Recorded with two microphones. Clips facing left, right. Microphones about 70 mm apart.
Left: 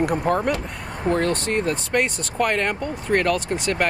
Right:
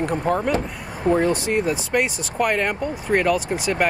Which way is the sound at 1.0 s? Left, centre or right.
Centre.